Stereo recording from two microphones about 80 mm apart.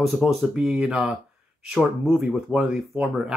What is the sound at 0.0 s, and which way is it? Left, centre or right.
Speech, centre.